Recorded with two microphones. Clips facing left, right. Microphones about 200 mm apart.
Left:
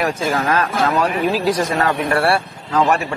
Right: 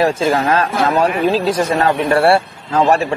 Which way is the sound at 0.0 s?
30° right (ahead or behind).